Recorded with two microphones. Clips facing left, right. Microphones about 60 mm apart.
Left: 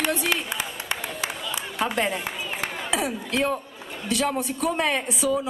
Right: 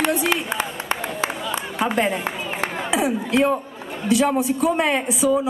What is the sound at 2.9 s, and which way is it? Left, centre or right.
A man's voice, centre.